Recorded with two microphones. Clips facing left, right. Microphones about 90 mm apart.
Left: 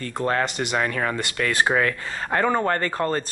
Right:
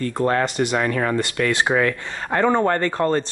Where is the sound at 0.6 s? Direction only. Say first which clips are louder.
Right 4 dB; 20° right (ahead or behind).